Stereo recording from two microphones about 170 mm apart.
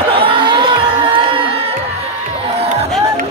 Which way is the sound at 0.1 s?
30° right (ahead or behind).